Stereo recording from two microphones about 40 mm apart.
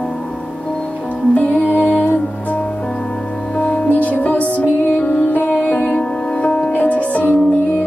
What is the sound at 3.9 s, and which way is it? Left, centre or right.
Music, left.